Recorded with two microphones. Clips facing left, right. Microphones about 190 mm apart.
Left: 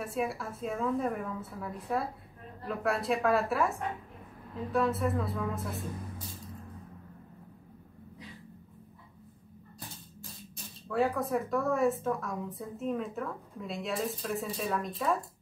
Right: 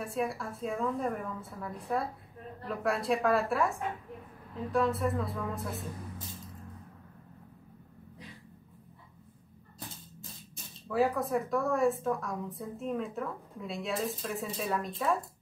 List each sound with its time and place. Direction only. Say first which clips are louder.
0.0 s a woman's voice: even; centre (ahead or behind)
4.7 s a woman's voice: even; centre (ahead or behind)
10.9 s a woman's voice: right 1 dB; centre (ahead or behind)